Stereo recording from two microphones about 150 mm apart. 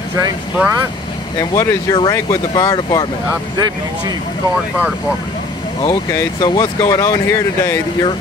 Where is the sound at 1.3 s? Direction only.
20° left (ahead or behind).